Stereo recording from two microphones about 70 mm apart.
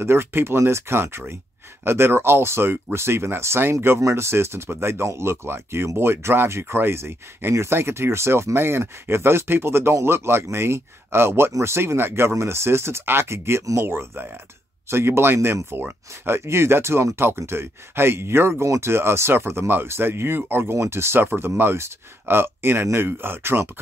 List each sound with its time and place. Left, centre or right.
0.0 s speech: right